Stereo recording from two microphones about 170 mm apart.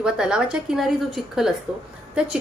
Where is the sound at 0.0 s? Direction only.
5° right (ahead or behind).